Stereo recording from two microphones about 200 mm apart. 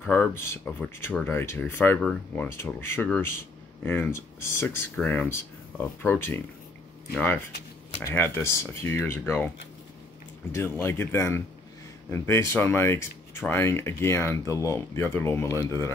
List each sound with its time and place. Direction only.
0.0 s speech: 10° left (ahead or behind)
10.5 s speech: 10° left (ahead or behind)